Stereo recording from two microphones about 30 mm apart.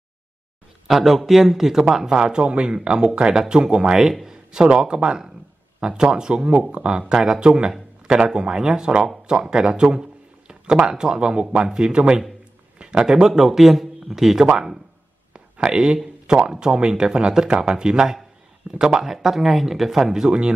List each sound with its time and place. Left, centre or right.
0.9 s speech: centre; by 2.5 s right
2.5 s speech: right
12.7 s a sound: right
13.0 s speech: centre
15.3 s a sound: right
16.3 s speech: right